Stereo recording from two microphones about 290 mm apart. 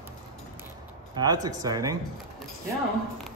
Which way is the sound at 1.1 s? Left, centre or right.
Centre.